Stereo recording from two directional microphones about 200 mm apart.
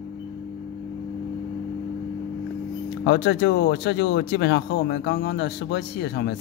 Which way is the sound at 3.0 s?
60° left (ahead or behind).